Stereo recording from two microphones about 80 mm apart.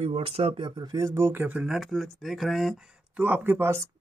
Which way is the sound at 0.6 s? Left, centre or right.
Right.